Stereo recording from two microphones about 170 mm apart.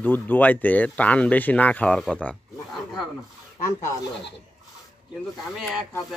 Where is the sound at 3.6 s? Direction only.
20° left (ahead or behind).